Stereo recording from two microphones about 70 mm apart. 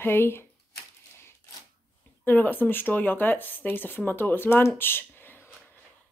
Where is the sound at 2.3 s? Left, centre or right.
Left.